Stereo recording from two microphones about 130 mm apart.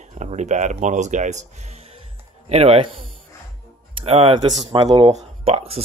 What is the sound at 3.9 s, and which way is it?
Speech, 50° right (ahead or behind).